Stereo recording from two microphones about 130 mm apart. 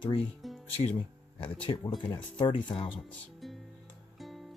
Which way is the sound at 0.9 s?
40° left (ahead or behind).